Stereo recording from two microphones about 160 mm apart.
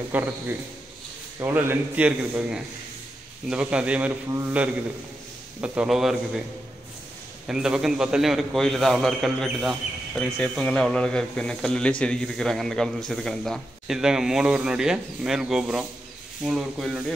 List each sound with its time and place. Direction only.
0.1 s a man's voice: 10° right (ahead or behind)
1.4 s a man's voice: 15° right (ahead or behind)
7.4 s a man's voice: 5° right (ahead or behind)